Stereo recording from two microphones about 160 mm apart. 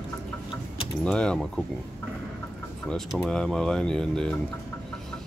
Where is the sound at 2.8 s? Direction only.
Centre (ahead or behind).